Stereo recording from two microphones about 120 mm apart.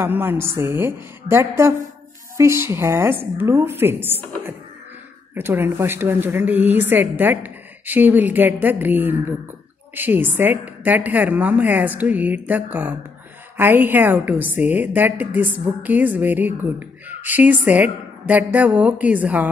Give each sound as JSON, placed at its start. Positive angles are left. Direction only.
{"t": 0.0, "sound": "a woman's voice", "side_deg": -15}
{"t": 5.3, "sound": "a woman's voice", "side_deg": -15}